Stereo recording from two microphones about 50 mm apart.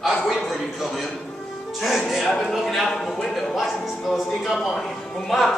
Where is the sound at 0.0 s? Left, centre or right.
Centre.